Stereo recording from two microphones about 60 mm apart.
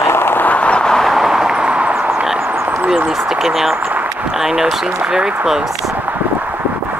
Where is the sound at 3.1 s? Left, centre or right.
Centre.